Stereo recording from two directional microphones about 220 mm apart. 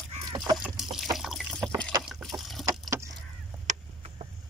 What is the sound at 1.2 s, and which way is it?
Water, centre (ahead or behind).